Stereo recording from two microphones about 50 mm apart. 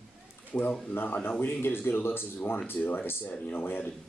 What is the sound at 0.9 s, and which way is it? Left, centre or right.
Speech, left.